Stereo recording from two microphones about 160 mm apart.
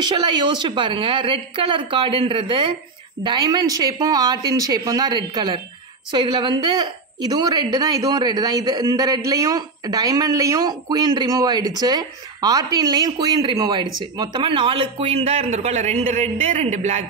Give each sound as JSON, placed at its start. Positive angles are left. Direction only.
{"t": 0.0, "sound": "a woman's voice", "side_deg": -30}